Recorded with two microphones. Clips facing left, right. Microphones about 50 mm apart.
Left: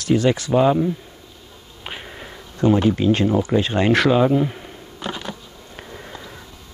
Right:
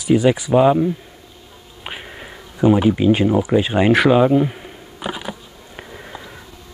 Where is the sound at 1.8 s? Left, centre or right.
Centre.